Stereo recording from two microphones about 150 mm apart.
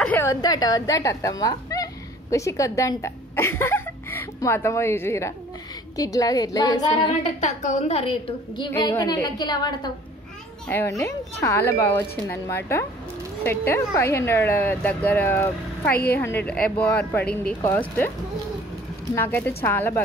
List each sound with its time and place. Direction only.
0.0 s a sound: 10° left (ahead or behind)
0.3 s a woman's voice: 25° left (ahead or behind)
7.0 s a woman's voice: 50° left (ahead or behind); by 9.9 s 25° left (ahead or behind)
10.7 s a woman's voice: 15° left (ahead or behind)
15.9 s a woman's voice: 85° left
16.2 s a woman's voice: 15° left (ahead or behind)
19.1 s a woman's voice: 15° left (ahead or behind)